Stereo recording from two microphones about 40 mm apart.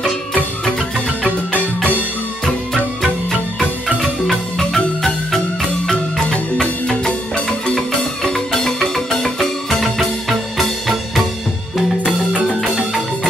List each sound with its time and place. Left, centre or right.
2.4 s music: centre
3.3 s music: centre
4.6 s music: centre
7.6 s music: centre